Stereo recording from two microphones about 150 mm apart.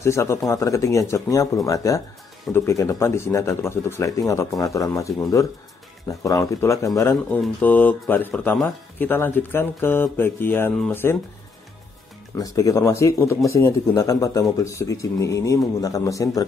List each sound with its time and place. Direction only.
0.0 s speech: 20° left (ahead or behind)
7.2 s speech: 10° left (ahead or behind)
12.4 s speech: 25° left (ahead or behind)